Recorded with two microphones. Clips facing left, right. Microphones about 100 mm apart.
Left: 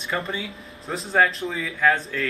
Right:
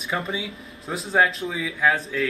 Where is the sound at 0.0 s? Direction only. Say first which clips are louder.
Even; centre (ahead or behind).